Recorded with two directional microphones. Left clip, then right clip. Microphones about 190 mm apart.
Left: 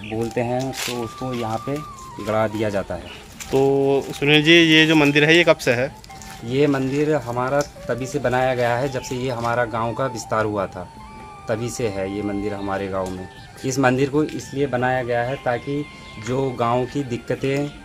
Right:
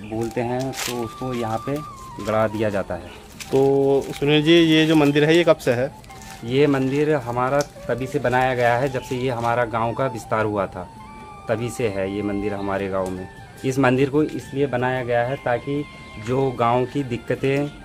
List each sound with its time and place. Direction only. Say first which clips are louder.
0.3 s speech: left 2 dB; 35° left (ahead or behind)
0.7 s speech: even; 10° left (ahead or behind)